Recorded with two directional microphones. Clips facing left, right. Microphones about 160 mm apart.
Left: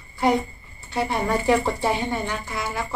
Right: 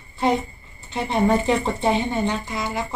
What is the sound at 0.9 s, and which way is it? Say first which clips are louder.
Speech: right 3 dB; 20° right (ahead or behind).